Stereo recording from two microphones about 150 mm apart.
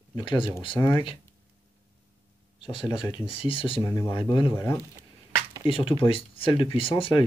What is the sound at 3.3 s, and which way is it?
Speech, 35° left (ahead or behind).